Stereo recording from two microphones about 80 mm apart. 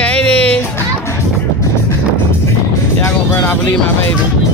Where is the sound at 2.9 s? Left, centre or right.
Left.